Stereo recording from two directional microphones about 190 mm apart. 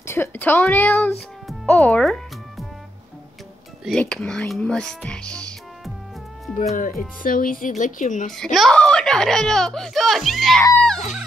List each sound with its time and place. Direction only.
0.0 s speech: 10° left (ahead or behind)
1.5 s music: 5° left (ahead or behind)
3.8 s speech: 5° left (ahead or behind)
6.8 s speech: 45° left (ahead or behind)
8.3 s speech: centre (ahead or behind)